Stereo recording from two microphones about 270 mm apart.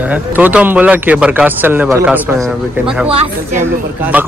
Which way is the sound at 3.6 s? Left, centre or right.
Centre.